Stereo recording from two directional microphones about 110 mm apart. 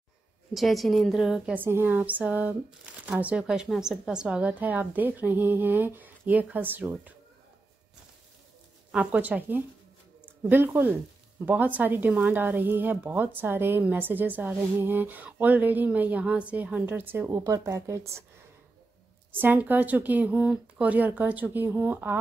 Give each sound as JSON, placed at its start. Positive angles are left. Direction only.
{"t": 0.6, "sound": "a woman's voice", "side_deg": 0}
{"t": 1.5, "sound": "speech", "side_deg": -20}
{"t": 8.9, "sound": "speech", "side_deg": -10}
{"t": 19.3, "sound": "speech", "side_deg": -15}